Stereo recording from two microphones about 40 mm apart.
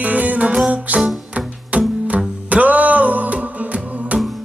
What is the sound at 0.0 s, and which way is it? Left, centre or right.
Music, right.